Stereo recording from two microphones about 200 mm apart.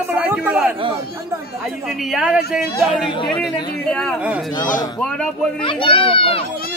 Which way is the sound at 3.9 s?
5° left (ahead or behind).